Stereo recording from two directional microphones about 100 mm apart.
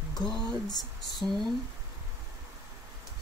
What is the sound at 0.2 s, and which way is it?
Speech, 5° left (ahead or behind).